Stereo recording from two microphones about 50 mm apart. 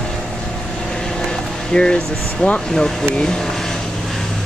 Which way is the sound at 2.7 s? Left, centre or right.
Centre.